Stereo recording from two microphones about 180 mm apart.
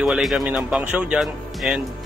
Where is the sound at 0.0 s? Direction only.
Centre (ahead or behind).